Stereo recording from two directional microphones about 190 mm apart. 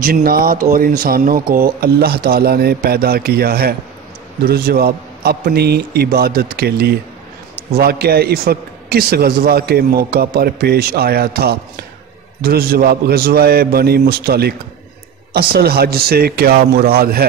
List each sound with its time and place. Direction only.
0.0 s a man's voice: 50° right (ahead or behind)